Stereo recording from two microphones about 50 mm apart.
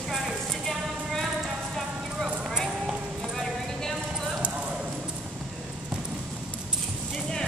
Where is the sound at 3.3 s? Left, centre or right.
Centre.